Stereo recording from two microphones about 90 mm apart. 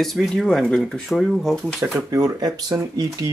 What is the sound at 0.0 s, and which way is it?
Speech, centre (ahead or behind).